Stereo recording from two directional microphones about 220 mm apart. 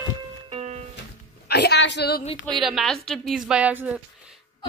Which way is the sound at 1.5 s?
50° left (ahead or behind).